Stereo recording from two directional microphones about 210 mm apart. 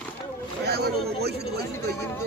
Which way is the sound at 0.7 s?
50° right (ahead or behind).